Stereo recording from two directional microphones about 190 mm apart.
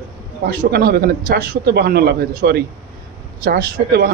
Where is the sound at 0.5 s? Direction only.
55° right (ahead or behind).